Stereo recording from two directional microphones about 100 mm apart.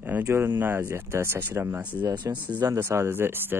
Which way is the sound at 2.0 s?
45° right (ahead or behind).